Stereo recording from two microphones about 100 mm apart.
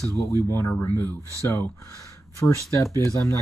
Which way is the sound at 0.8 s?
25° left (ahead or behind).